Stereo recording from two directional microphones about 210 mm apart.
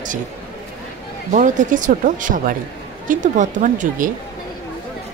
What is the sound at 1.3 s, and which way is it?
Speech, 35° right (ahead or behind).